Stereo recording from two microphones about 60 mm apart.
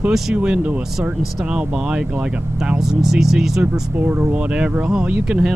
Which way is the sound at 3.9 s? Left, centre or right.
Right.